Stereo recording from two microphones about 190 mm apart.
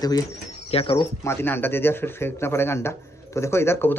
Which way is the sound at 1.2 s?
10° left (ahead or behind).